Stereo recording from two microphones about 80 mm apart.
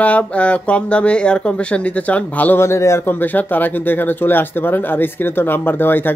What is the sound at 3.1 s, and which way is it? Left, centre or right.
Speech, left.